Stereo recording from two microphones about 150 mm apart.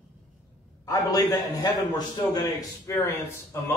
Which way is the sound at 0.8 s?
25° left (ahead or behind).